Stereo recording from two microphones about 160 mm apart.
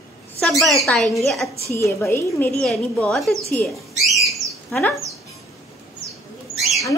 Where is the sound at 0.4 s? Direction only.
Centre (ahead or behind).